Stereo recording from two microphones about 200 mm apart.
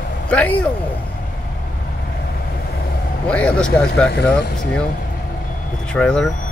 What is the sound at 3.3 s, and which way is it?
Speech, 5° left (ahead or behind).